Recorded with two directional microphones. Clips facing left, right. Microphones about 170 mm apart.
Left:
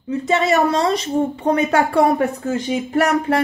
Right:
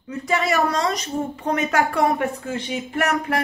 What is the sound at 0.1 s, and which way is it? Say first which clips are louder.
A woman's voice: left 5 dB; 25° left (ahead or behind).